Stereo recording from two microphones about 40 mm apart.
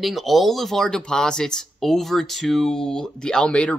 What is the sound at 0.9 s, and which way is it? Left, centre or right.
Speech, centre.